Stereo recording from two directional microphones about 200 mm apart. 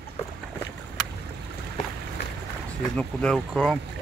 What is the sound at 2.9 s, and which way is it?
Speech, centre (ahead or behind).